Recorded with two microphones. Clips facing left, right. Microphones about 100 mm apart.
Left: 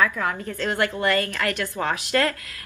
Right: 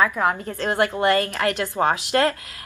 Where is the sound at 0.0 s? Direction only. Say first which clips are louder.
Right 3 dB; 25° right (ahead or behind).